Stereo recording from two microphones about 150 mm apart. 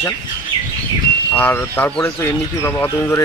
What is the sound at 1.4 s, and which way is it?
Speech, 15° left (ahead or behind).